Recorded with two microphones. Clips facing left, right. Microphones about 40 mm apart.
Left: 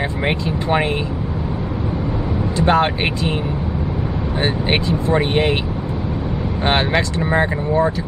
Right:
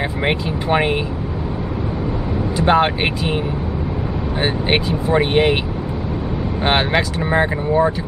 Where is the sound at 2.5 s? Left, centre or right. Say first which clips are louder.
Right 1 dB; centre.